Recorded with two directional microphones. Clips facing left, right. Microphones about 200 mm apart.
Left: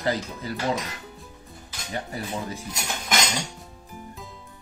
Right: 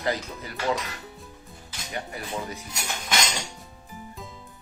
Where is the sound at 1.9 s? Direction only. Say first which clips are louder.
Left 2 dB; 30° left (ahead or behind).